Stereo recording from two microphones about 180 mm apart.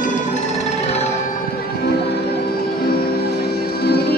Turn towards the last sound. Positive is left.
turn(degrees=60)  # may be behind; listen again after turning